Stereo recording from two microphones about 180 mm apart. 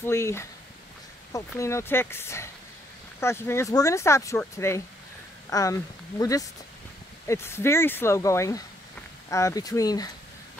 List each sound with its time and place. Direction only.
0.0 s speech: 15° left (ahead or behind)
1.6 s speech: 15° left (ahead or behind)